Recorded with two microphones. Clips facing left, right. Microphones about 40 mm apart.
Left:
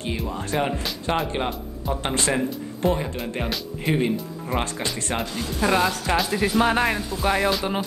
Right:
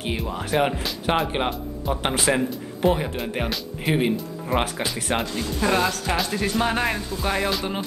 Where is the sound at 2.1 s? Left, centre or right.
Centre.